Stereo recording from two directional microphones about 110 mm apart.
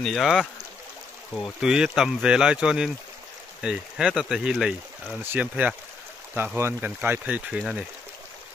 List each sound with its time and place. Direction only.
0.0 s speech: centre (ahead or behind)
5.2 s speech: 15° right (ahead or behind)